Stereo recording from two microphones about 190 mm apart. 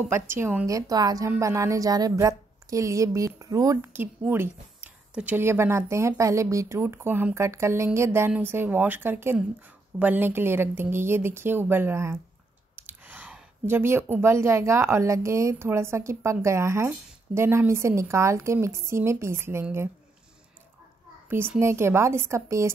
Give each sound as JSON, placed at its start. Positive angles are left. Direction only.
{"t": 0.1, "sound": "a woman's voice", "side_deg": -15}
{"t": 12.7, "sound": "a sound", "side_deg": -10}
{"t": 14.2, "sound": "a woman's voice", "side_deg": -15}
{"t": 21.3, "sound": "a woman's voice", "side_deg": -10}